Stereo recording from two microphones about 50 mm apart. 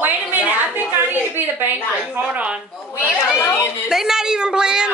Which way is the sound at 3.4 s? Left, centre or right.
Left.